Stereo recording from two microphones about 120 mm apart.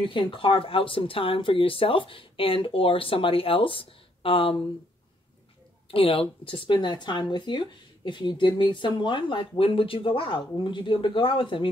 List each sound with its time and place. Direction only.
0.0 s speech: 45° left (ahead or behind)
5.9 s speech: 50° left (ahead or behind)